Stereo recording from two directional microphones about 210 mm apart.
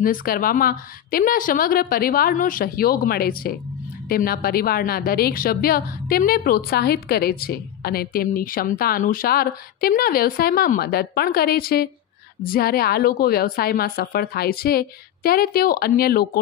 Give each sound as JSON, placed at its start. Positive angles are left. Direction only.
{"t": 0.0, "sound": "a woman's voice", "side_deg": 40}